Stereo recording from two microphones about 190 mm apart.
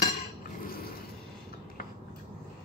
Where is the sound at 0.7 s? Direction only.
50° left (ahead or behind).